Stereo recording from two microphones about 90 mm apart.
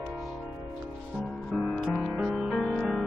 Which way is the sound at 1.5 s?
10° right (ahead or behind).